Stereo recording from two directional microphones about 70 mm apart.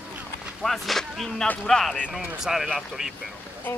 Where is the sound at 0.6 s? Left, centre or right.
Centre.